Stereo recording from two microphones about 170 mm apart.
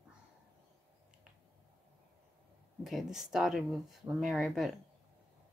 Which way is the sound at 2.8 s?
Centre (ahead or behind).